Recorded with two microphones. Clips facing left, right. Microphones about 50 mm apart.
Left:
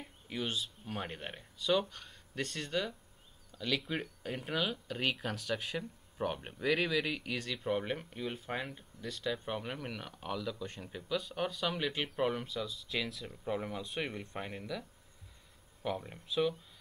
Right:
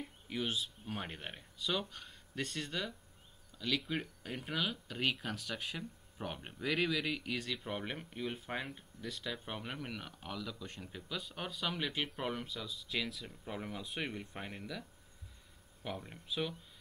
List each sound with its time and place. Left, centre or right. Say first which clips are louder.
0.3 s speech: left 1 dB; centre